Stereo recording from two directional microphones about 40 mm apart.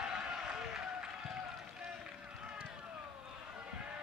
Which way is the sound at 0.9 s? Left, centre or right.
Right.